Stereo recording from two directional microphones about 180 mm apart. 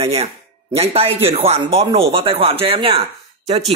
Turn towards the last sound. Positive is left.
turn(degrees=-35)  # may be behind; listen again after turning